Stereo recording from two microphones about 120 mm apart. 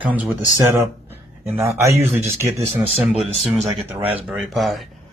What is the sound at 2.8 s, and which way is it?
Speech, 55° right (ahead or behind).